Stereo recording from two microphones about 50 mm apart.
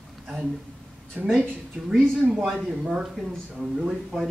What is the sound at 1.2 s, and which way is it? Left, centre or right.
Speech, right.